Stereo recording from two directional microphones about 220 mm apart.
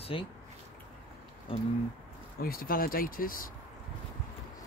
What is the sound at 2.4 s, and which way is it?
Speech, 40° left (ahead or behind).